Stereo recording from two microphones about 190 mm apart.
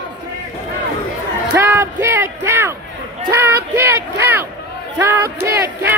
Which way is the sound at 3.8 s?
15° right (ahead or behind).